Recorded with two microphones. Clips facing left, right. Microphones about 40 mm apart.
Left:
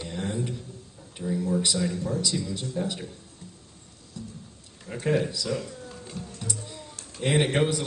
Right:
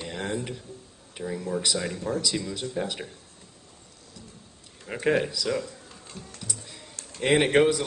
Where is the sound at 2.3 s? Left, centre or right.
Right.